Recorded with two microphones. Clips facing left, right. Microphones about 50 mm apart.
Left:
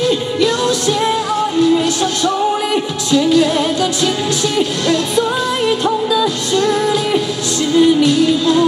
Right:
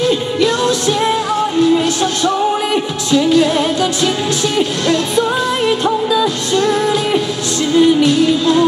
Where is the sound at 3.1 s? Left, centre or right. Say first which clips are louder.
Even; right.